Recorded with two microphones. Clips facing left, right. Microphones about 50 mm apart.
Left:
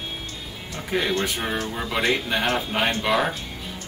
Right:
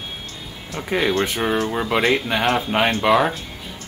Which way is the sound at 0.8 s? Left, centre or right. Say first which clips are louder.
Right 4 dB; centre.